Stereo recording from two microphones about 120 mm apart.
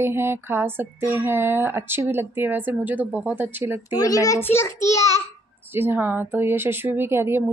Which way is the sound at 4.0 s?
30° left (ahead or behind).